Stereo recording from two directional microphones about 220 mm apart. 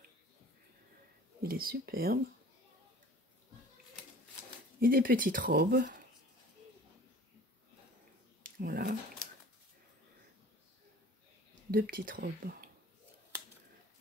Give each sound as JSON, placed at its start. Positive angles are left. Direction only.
{"t": 1.4, "sound": "speech", "side_deg": -40}
{"t": 4.7, "sound": "speech", "side_deg": -40}
{"t": 8.4, "sound": "a sound", "side_deg": -40}
{"t": 11.7, "sound": "speech", "side_deg": -40}